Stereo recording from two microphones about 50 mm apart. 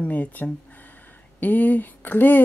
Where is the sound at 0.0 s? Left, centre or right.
Left.